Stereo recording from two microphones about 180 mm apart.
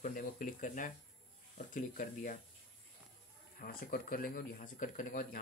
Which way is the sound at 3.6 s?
55° left (ahead or behind).